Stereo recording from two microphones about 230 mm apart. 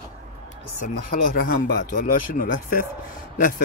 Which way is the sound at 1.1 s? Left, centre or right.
Left.